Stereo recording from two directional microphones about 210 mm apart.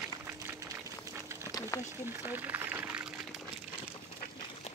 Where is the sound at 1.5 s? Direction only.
15° left (ahead or behind).